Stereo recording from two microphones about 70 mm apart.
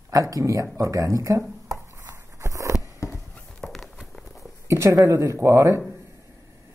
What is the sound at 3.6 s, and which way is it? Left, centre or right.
Walk, centre.